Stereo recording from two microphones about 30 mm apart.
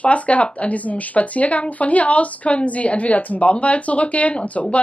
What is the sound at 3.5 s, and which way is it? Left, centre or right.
Speech, left.